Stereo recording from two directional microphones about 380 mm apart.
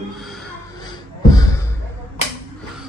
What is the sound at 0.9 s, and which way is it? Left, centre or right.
Music, centre.